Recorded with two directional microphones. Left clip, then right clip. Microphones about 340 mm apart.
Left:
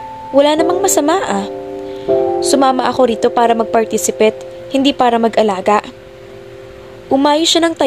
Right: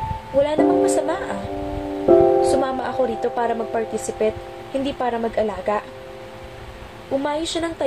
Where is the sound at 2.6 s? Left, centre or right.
Left.